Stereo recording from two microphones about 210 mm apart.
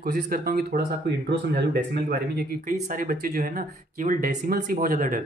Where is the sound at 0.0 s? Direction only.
45° right (ahead or behind).